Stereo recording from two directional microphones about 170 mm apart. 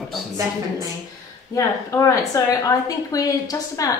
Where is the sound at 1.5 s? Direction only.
15° left (ahead or behind).